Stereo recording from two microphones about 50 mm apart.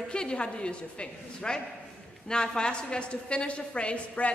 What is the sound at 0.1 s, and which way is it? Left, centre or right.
A woman's voice, centre.